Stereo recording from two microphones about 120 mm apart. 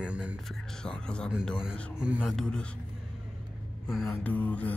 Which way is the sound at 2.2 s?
5° left (ahead or behind).